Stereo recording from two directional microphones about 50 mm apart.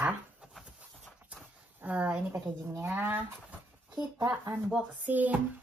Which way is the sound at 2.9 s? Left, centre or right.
Right.